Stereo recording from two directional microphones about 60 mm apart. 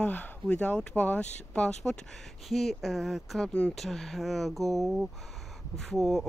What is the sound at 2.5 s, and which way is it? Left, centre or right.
Speech, centre.